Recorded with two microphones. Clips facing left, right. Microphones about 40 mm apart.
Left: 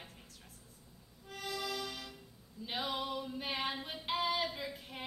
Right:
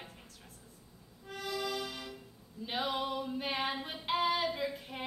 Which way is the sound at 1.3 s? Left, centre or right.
Centre.